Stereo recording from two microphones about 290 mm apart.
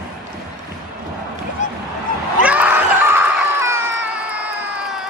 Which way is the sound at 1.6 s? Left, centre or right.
Left.